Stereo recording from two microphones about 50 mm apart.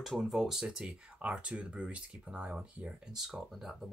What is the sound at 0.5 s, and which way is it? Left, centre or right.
Speech, centre.